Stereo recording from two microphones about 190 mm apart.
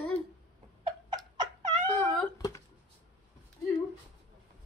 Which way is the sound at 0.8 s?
20° right (ahead or behind).